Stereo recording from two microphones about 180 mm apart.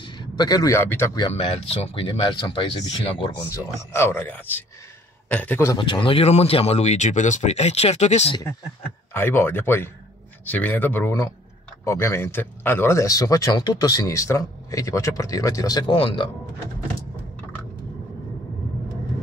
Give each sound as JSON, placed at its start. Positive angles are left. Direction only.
{"t": 0.0, "sound": "speech", "side_deg": 25}
{"t": 1.3, "sound": "speech", "side_deg": 35}
{"t": 3.4, "sound": "speech", "side_deg": 15}
{"t": 5.8, "sound": "speech", "side_deg": 30}
{"t": 9.1, "sound": "speech", "side_deg": 10}